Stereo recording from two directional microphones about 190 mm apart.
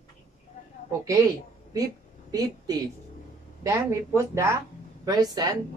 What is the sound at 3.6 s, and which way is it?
Speech, 15° right (ahead or behind).